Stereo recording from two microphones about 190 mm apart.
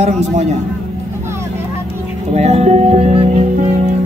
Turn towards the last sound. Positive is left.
turn(degrees=-35)  # may be behind; listen again after turning